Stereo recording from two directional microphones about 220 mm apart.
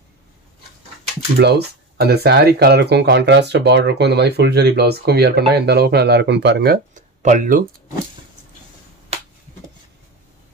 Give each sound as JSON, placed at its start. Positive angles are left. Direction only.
{"t": 1.4, "sound": "speech", "side_deg": -45}